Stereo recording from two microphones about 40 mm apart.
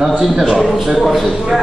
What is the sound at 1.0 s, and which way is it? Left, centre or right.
Speech, centre.